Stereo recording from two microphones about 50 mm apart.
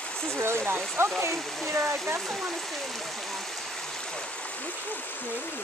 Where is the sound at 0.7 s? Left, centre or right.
Right.